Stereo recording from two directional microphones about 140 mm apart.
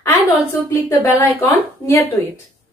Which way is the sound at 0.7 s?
20° left (ahead or behind).